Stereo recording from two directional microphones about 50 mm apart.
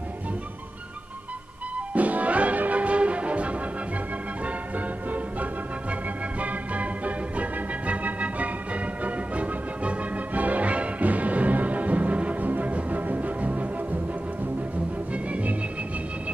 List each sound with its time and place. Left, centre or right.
2.0 s music: right
4.7 s organ: right
9.0 s music: right